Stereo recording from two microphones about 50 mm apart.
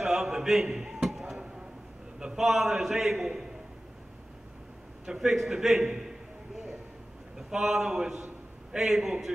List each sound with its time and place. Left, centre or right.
0.0 s a sound: centre
2.4 s a man's voice: centre
5.0 s a man's voice: centre
7.3 s a man's voice: centre